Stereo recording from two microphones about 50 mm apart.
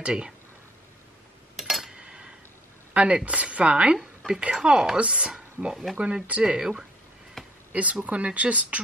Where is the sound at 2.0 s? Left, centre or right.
Centre.